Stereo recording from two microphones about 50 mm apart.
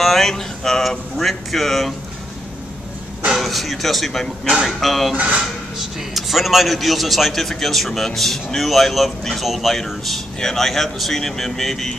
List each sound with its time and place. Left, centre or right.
0.0 s a man's voice: centre
3.3 s a man's voice: centre